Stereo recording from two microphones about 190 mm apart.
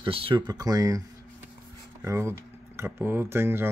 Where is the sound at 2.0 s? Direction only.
15° right (ahead or behind).